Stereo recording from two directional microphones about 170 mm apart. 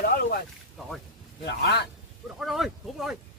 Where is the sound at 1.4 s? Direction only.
75° left (ahead or behind).